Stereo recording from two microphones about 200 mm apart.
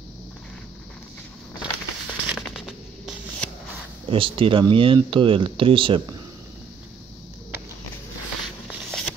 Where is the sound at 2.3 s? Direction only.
Centre (ahead or behind).